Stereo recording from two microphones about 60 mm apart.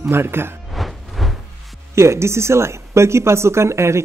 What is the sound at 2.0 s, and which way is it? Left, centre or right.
Speech, right.